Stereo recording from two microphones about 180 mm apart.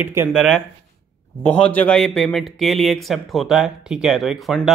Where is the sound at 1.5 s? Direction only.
5° left (ahead or behind).